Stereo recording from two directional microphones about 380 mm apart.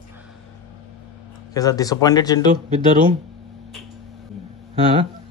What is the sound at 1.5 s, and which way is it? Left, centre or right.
Speech, centre.